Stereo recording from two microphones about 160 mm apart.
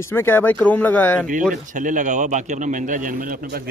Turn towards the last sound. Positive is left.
turn(degrees=-65)  # may be behind; listen again after turning